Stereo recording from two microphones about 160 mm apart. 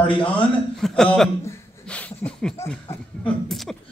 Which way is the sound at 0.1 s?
35° left (ahead or behind).